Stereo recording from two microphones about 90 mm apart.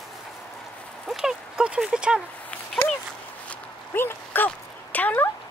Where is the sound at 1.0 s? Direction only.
5° right (ahead or behind).